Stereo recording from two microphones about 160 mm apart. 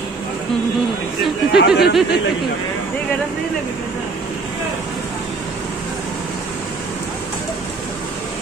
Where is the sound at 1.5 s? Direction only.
90° left.